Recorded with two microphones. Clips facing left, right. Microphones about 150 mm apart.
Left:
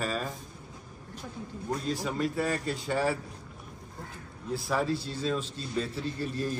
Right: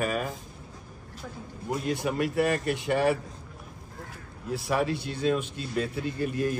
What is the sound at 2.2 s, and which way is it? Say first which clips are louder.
Speech: right 5 dB; 75° right (ahead or behind).